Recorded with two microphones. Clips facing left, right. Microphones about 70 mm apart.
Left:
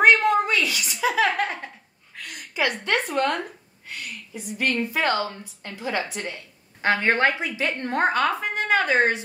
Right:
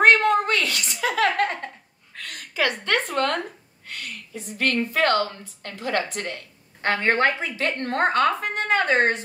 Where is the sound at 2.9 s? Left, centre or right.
Centre.